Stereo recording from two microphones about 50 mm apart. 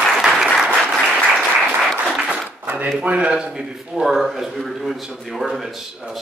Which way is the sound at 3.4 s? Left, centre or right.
Centre.